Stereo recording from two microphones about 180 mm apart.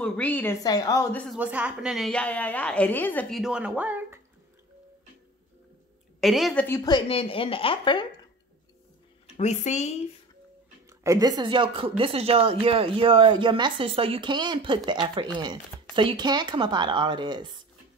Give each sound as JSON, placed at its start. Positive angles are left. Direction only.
{"t": 0.0, "sound": "a woman's voice", "side_deg": 10}
{"t": 1.3, "sound": "a woman's voice", "side_deg": -10}
{"t": 6.2, "sound": "a woman's voice", "side_deg": 0}
{"t": 6.6, "sound": "a woman's voice", "side_deg": 15}
{"t": 6.9, "sound": "a woman's voice", "side_deg": 30}
{"t": 9.4, "sound": "a woman's voice", "side_deg": 40}
{"t": 10.9, "sound": "speech", "side_deg": -20}